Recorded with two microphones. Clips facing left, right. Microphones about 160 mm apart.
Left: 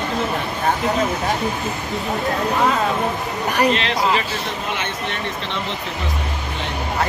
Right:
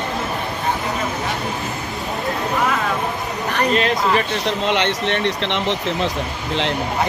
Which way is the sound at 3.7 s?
45° right (ahead or behind).